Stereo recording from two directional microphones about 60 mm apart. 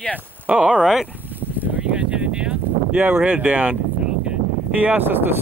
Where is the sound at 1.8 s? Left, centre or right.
Centre.